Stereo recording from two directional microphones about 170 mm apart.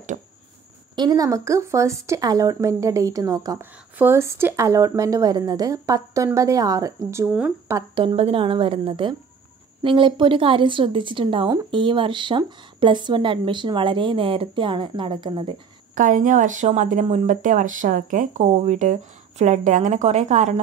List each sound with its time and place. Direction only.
0.9 s speech: 25° right (ahead or behind); by 7.7 s 5° right (ahead or behind)
7.9 s a woman's voice: 30° right (ahead or behind)
15.9 s speech: 50° right (ahead or behind)